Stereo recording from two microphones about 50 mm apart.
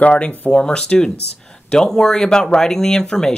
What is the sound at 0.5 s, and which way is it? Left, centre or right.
Speech, centre.